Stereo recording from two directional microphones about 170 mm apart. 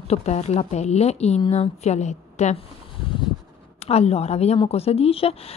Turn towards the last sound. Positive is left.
turn(degrees=35)  # may be behind; listen again after turning